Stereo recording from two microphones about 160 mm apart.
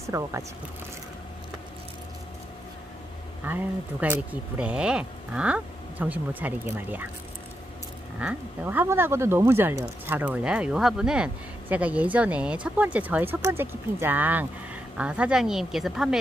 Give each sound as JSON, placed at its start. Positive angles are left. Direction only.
{"t": 0.0, "sound": "speech", "side_deg": -20}
{"t": 3.4, "sound": "speech", "side_deg": -10}
{"t": 8.2, "sound": "speech", "side_deg": -10}